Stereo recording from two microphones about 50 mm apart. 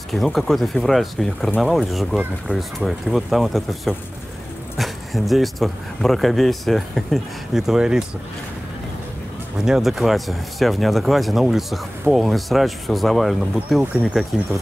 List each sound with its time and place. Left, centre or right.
0.1 s speech: centre
7.6 s speech: centre
9.7 s speech: centre